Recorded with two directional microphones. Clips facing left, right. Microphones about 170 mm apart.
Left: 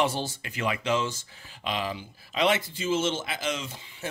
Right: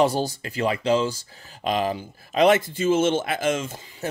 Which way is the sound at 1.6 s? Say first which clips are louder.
Right 7 dB; 45° right (ahead or behind).